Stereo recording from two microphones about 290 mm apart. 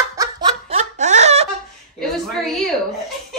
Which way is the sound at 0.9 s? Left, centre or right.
Right.